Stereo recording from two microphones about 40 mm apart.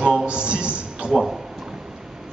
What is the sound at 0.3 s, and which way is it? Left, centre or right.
Music, right.